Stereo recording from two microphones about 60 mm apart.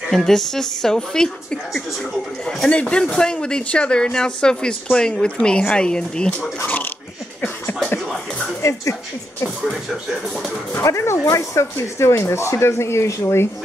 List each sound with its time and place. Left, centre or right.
0.1 s speech: centre
2.7 s speech: centre
6.6 s a sound: left
8.6 s a sound: left
9.7 s speech: centre
10.8 s speech: left